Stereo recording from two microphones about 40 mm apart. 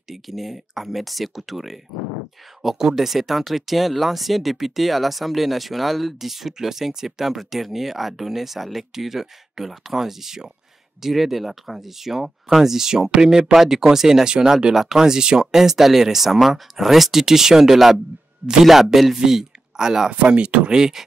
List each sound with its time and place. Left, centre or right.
0.1 s speech: centre
20.1 s speech: right
20.7 s speech: centre